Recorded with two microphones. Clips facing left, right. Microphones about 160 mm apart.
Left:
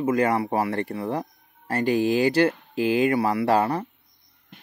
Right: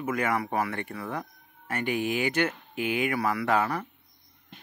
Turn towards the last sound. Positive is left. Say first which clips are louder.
# left 5 dB
turn(degrees=30)  # may be behind; listen again after turning